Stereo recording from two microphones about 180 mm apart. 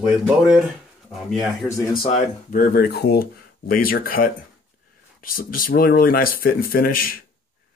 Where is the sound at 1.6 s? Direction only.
25° left (ahead or behind).